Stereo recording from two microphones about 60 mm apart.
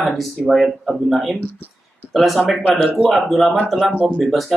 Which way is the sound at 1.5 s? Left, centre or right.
Left.